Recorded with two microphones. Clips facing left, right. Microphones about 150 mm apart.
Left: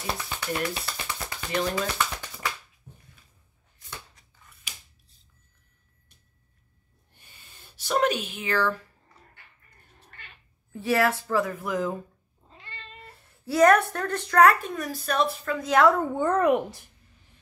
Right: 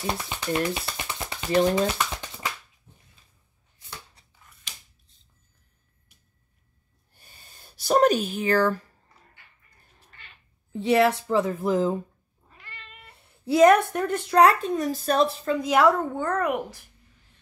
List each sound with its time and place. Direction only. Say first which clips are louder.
0.0 s a sound: right 3 dB; 20° right (ahead or behind)
4.4 s scissors: left 1 dB; centre (ahead or behind)
7.2 s a sound: right 1 dB; 35° right (ahead or behind)
10.7 s speech: right 4 dB; 20° right (ahead or behind)
12.4 s cat: left 2 dB; 25° left (ahead or behind)
13.5 s speech: right 2 dB; 20° right (ahead or behind)
14.4 s speech: even; 25° right (ahead or behind)
15.6 s a woman's voice: even; 10° right (ahead or behind)
16.2 s a child's voice: left 4 dB; 20° left (ahead or behind)